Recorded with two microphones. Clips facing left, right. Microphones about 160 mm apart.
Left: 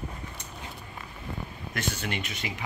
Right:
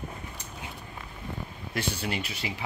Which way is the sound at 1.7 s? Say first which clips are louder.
Right 1 dB; 30° right (ahead or behind).